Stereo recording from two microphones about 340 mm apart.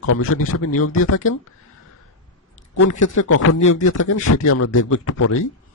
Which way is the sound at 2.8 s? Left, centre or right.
Left.